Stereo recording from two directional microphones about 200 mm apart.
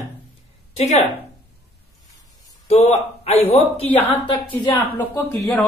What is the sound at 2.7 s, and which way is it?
Speech, 30° left (ahead or behind).